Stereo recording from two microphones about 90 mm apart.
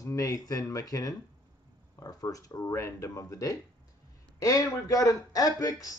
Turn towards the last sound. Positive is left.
turn(degrees=40)  # may be behind; listen again after turning